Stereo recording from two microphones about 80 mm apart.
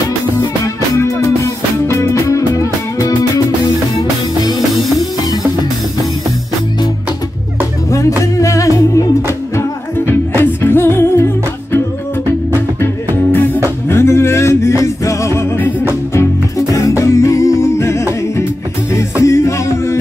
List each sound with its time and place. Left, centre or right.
0.9 s music: left
8.2 s music: left
10.4 s music: left
16.2 s music: left